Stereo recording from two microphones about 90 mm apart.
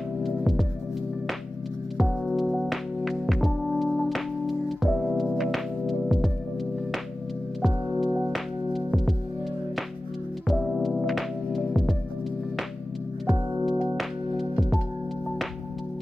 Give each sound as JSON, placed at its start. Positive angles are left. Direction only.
{"t": 0.4, "sound": "music", "side_deg": 0}
{"t": 2.0, "sound": "music", "side_deg": 0}
{"t": 7.6, "sound": "music", "side_deg": 0}
{"t": 10.5, "sound": "music", "side_deg": 0}
{"t": 13.3, "sound": "music", "side_deg": 0}